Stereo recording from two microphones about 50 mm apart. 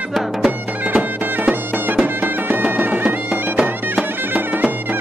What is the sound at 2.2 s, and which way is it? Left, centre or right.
Music, right.